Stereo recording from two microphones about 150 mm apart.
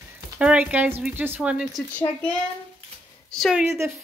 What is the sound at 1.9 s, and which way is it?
A child's voice, 10° left (ahead or behind).